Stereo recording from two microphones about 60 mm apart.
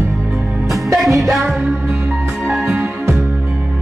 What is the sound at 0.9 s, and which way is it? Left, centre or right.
Music, centre.